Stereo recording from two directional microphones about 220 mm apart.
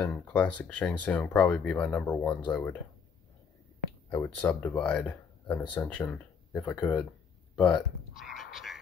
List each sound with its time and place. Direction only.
0.0 s speech: 5° left (ahead or behind)
4.1 s speech: 10° left (ahead or behind)
6.7 s speech: 15° left (ahead or behind)
7.5 s a sound: 5° left (ahead or behind)